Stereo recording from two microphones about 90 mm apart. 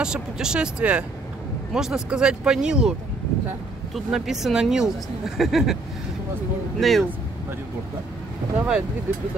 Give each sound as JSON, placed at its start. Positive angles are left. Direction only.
{"t": 0.0, "sound": "speech", "side_deg": -10}
{"t": 6.8, "sound": "speech", "side_deg": 0}
{"t": 8.5, "sound": "speech", "side_deg": -10}